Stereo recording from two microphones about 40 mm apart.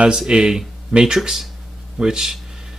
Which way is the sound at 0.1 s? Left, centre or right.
Centre.